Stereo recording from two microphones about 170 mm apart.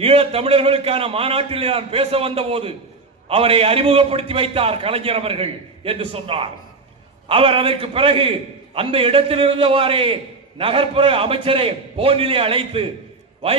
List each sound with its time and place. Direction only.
0.0 s a man's voice: 35° right (ahead or behind)